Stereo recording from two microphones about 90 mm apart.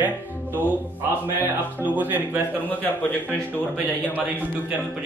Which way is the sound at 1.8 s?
20° right (ahead or behind).